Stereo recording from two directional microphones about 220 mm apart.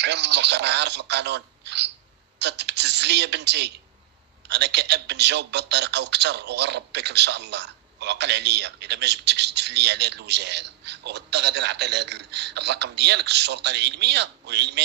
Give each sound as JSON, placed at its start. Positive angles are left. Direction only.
{"t": 0.0, "sound": "a man's voice", "side_deg": -50}